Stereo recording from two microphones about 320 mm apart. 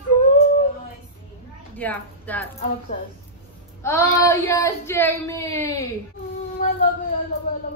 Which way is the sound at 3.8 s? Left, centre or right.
Centre.